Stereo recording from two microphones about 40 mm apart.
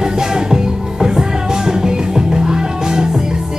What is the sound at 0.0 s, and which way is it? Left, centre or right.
Music, centre.